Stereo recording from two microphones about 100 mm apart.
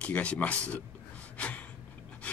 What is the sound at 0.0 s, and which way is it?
Speech, 10° left (ahead or behind).